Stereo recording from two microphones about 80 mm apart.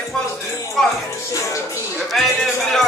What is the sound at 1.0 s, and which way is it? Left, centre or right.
Speech, left.